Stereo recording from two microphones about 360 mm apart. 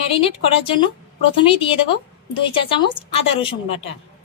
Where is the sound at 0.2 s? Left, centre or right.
Centre.